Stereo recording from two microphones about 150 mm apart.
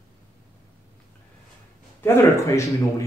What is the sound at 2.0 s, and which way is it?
Speech, 15° left (ahead or behind).